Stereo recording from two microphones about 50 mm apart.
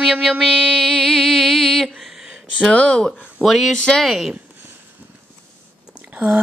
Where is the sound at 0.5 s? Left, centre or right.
Centre.